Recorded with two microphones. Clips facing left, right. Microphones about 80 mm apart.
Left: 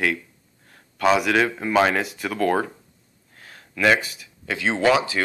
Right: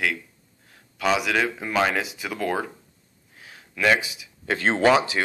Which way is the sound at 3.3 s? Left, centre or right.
Centre.